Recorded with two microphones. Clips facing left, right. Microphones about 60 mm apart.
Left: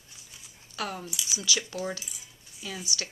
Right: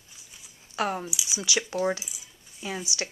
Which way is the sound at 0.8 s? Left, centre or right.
Right.